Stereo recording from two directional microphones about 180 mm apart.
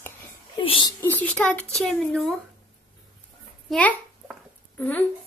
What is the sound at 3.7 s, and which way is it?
A child's voice, 10° left (ahead or behind).